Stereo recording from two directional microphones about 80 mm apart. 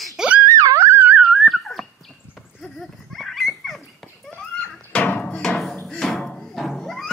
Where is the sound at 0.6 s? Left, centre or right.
Right.